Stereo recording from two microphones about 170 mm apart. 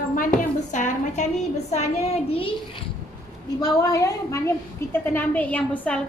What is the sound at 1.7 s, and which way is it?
Speech, 40° left (ahead or behind).